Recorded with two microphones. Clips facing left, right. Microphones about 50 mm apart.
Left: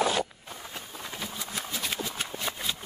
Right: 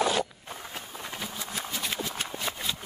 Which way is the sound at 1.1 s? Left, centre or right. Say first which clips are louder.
Even; centre.